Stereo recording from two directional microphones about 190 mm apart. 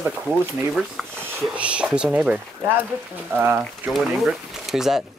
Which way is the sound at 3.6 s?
Centre (ahead or behind).